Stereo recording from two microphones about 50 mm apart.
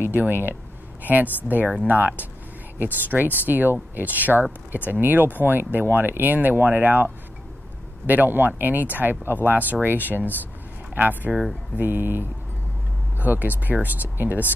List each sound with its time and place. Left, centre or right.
0.0 s speech: right
1.8 s speech: right
8.1 s speech: right
11.7 s speech: right